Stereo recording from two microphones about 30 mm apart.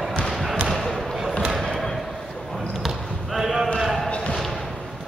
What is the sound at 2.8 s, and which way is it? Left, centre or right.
Basketball bounce, centre.